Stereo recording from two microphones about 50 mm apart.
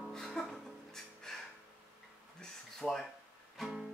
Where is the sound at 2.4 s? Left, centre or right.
Centre.